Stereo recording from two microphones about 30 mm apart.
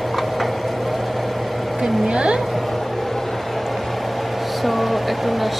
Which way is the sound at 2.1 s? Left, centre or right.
Right.